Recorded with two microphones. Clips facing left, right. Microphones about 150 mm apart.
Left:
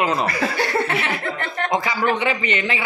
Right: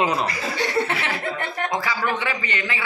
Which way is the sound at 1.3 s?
15° right (ahead or behind).